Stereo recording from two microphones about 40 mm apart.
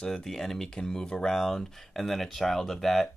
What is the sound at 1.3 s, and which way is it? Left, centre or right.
Speech, centre.